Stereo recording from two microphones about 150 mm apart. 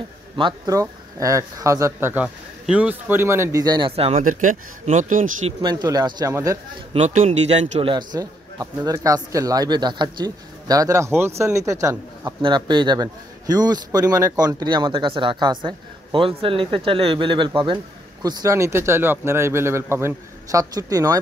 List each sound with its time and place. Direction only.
0.4 s a man's voice: 25° right (ahead or behind)
3.6 s a man's voice: 30° right (ahead or behind)
3.9 s a man's voice: 40° right (ahead or behind)
4.2 s speech: 60° right (ahead or behind)
5.6 s a man's voice: 30° right (ahead or behind)
6.9 s a man's voice: 50° right (ahead or behind); by 12.4 s 20° right (ahead or behind)
12.4 s a man's voice: 30° right (ahead or behind)